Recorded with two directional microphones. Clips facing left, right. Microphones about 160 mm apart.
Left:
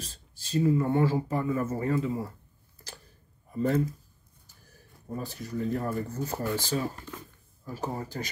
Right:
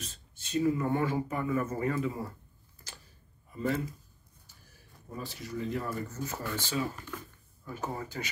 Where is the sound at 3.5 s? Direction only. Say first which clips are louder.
Left 4 dB; 40° left (ahead or behind).